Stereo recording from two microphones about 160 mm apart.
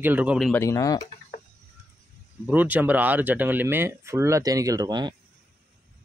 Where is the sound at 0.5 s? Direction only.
20° left (ahead or behind).